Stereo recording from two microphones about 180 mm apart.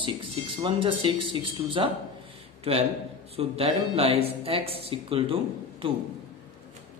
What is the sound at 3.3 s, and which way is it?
A man's voice, 35° right (ahead or behind).